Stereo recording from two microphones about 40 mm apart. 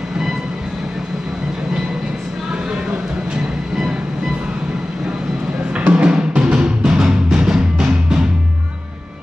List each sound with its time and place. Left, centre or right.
5.8 s music: right